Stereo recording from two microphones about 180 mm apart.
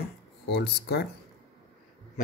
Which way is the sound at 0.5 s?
65° left (ahead or behind).